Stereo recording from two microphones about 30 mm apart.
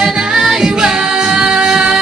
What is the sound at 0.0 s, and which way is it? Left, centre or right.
Music, centre.